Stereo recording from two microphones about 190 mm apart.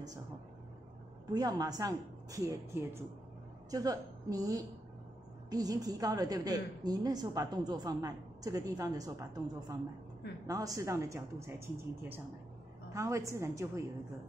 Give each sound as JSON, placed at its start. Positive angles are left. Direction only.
{"t": 1.3, "sound": "a woman's voice", "side_deg": -20}